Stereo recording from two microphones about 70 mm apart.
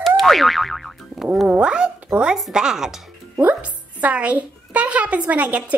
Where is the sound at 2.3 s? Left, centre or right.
Centre.